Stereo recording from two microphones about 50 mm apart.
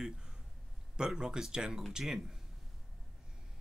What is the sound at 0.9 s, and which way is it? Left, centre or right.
Speech, centre.